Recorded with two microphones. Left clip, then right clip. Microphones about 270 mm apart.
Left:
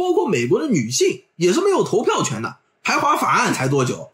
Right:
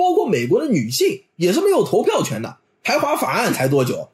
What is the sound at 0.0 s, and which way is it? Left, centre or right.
Speech, centre.